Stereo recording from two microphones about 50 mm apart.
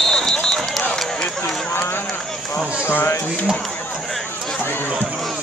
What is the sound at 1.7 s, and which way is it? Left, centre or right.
Run, left.